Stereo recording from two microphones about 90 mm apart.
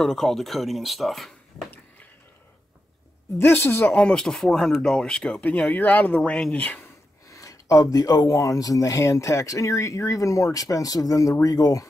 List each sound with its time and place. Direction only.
0.0 s speech: 5° left (ahead or behind)
3.3 s speech: 30° left (ahead or behind)
3.9 s speech: 10° left (ahead or behind)
7.2 s speech: 40° left (ahead or behind)